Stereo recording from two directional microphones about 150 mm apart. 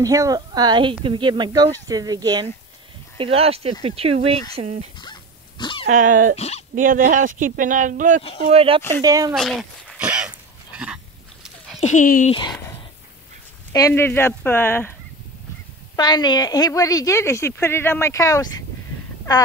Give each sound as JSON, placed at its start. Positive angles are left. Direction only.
{"t": 0.0, "sound": "speech", "side_deg": -20}
{"t": 3.2, "sound": "speech", "side_deg": -40}
{"t": 4.9, "sound": "dog", "side_deg": 30}
{"t": 5.9, "sound": "speech", "side_deg": -55}
{"t": 6.3, "sound": "speech", "side_deg": 45}
{"t": 6.7, "sound": "speech", "side_deg": -65}
{"t": 8.5, "sound": "speech", "side_deg": -40}
{"t": 9.0, "sound": "speech", "side_deg": -25}
{"t": 9.3, "sound": "a sound", "side_deg": 0}
{"t": 11.8, "sound": "speech", "side_deg": 55}
{"t": 12.3, "sound": "speech", "side_deg": 30}
{"t": 13.7, "sound": "speech", "side_deg": 20}
{"t": 16.0, "sound": "a woman's voice", "side_deg": 30}